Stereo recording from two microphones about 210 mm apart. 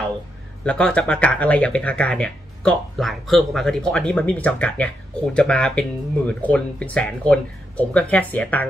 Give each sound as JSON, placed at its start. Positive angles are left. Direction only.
{"t": 0.7, "sound": "speech", "side_deg": 5}